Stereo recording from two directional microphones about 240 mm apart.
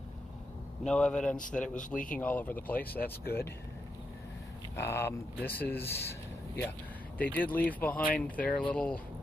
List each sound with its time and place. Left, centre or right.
0.8 s speech: centre
1.8 s speech: left
2.1 s speech: centre
4.7 s speech: centre